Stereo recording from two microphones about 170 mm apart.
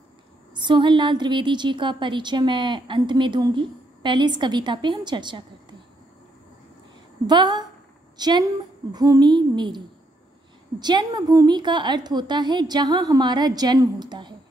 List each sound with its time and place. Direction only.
0.6 s a woman's voice: 30° right (ahead or behind)
7.2 s a woman's voice: 25° right (ahead or behind)
10.8 s a woman's voice: 25° right (ahead or behind)